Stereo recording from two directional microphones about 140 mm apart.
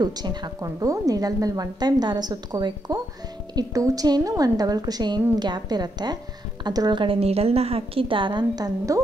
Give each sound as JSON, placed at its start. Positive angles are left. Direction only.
{"t": 0.0, "sound": "a woman's voice", "side_deg": -30}